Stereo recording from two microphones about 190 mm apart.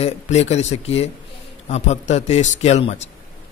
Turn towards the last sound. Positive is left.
turn(degrees=35)  # may be behind; listen again after turning